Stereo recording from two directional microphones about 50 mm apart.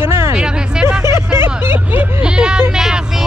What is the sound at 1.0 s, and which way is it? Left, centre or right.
Speech, right.